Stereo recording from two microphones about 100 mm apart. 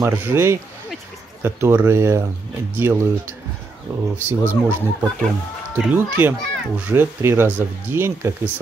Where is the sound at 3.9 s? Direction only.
40° right (ahead or behind).